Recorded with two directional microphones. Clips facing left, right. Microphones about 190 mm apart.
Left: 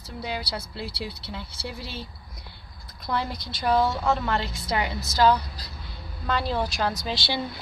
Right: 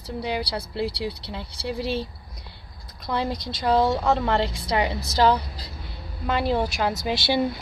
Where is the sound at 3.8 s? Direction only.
30° right (ahead or behind).